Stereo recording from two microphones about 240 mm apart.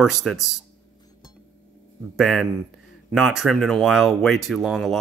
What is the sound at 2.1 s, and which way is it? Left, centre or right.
Speech, centre.